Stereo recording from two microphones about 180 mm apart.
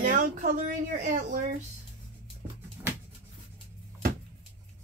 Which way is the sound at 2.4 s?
15° right (ahead or behind).